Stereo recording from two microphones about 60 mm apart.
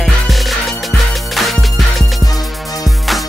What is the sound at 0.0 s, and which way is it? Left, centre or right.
Music, centre.